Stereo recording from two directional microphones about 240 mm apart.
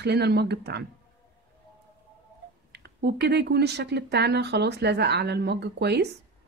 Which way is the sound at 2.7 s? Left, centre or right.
Right.